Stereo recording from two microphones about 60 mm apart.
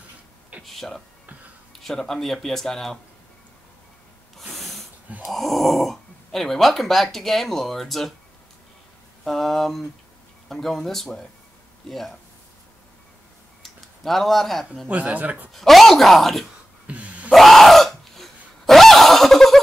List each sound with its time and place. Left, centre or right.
0.7 s speech: centre
4.4 s snort: centre
5.3 s speech: centre
9.2 s speech: centre
13.6 s a sound: centre
14.9 s speech: right
15.5 s speech: centre
16.8 s gasp: right
17.3 s screaming: centre